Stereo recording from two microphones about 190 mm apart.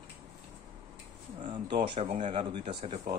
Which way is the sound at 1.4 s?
25° right (ahead or behind).